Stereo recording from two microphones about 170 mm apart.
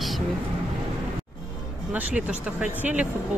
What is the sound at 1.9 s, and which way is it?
Speech, 10° right (ahead or behind).